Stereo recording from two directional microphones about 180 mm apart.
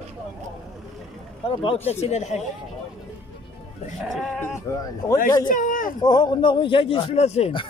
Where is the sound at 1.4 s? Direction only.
30° left (ahead or behind).